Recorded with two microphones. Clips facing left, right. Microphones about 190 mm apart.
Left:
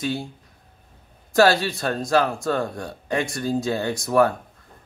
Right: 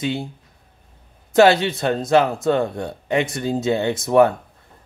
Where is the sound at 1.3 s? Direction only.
20° right (ahead or behind).